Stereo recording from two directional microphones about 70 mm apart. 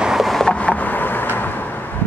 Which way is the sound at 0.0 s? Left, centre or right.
Centre.